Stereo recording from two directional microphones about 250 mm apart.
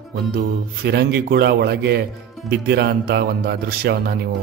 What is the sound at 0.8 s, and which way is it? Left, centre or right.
Speech, right.